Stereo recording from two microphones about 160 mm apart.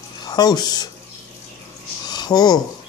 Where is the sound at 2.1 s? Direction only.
25° left (ahead or behind).